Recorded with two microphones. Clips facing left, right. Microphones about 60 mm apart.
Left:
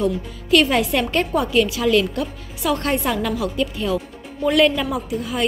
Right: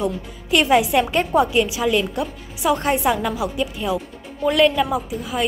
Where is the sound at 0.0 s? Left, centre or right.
Centre.